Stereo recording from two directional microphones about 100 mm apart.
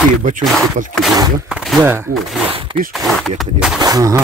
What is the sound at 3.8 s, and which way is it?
Speech, 40° right (ahead or behind).